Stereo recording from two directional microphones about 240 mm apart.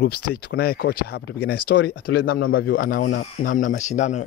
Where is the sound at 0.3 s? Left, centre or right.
Left.